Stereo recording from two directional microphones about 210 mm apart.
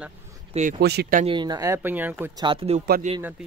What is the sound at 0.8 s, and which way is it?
Speech, 50° right (ahead or behind).